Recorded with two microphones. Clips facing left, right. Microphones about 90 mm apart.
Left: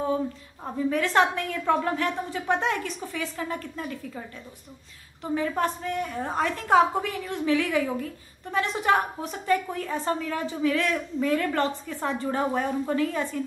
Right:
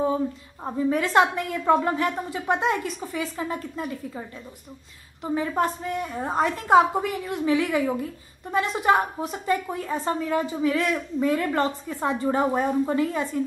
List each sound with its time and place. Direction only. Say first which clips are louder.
0.8 s a woman's voice: right 2 dB; 15° right (ahead or behind)
5.2 s a woman's voice: right 2 dB; 15° right (ahead or behind)